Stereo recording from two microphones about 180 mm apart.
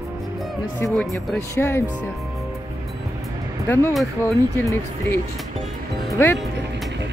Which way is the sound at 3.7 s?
15° left (ahead or behind).